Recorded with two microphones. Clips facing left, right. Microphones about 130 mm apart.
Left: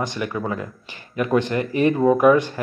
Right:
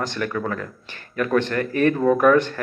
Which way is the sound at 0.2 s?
15° left (ahead or behind).